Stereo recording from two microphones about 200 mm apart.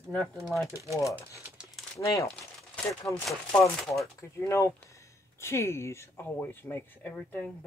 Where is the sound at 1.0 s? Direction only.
15° left (ahead or behind).